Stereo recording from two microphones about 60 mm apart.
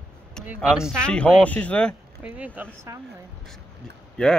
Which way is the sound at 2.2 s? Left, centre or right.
Right.